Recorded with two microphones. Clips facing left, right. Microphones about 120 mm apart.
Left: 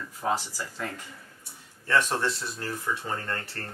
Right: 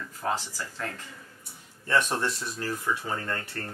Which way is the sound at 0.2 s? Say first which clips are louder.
Left 2 dB; 10° left (ahead or behind).